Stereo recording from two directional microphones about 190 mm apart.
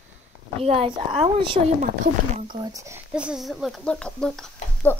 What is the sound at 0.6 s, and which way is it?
Speech, 30° right (ahead or behind).